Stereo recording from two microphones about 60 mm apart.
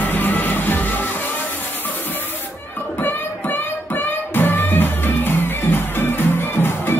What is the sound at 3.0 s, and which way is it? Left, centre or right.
Music, left.